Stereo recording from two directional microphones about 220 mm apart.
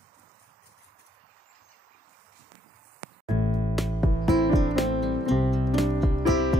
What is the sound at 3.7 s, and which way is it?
Music, centre (ahead or behind).